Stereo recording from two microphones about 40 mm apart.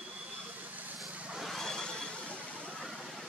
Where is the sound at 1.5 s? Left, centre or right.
Centre.